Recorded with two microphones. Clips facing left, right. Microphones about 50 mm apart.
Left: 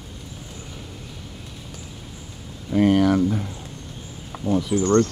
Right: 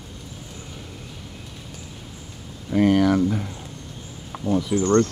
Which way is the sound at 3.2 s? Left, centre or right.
Right.